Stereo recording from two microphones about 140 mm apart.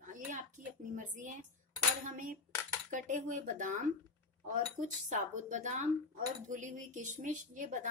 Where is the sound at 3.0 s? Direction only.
60° right (ahead or behind).